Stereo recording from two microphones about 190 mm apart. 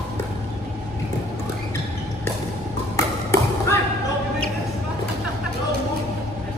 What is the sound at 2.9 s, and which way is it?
Ping, 15° left (ahead or behind).